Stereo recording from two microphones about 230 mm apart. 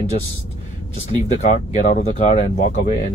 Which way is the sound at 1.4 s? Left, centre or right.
Left.